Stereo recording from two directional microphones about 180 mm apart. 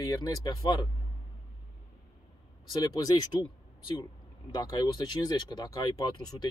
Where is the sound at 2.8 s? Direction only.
20° left (ahead or behind).